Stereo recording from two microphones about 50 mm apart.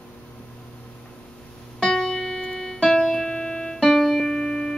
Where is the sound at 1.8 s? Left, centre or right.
Centre.